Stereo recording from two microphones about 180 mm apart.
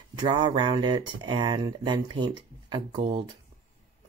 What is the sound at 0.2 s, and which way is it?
Speech, 25° right (ahead or behind).